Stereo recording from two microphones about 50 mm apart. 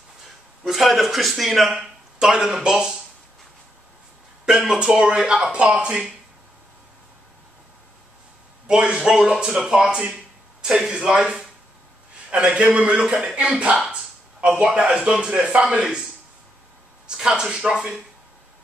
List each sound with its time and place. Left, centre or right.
0.7 s a man's voice: centre
1.7 s speech: centre
4.5 s speech: centre
5.4 s speech: right
8.6 s speech: right
13.8 s a sound: centre
14.9 s speech: centre
17.1 s speech: centre